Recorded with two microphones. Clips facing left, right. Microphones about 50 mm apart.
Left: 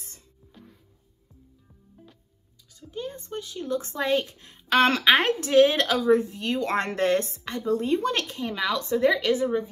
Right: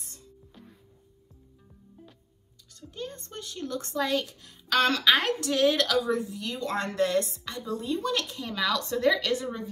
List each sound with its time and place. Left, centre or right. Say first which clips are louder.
2.7 s a woman's voice: left 4 dB; centre